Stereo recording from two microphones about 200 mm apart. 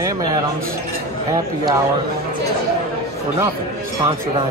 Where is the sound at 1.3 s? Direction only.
20° right (ahead or behind).